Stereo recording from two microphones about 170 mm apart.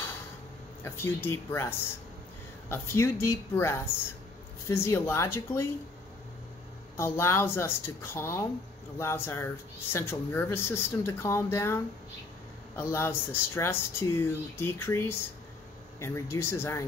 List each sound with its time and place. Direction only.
0.8 s speech: 15° left (ahead or behind)
7.0 s speech: 15° left (ahead or behind)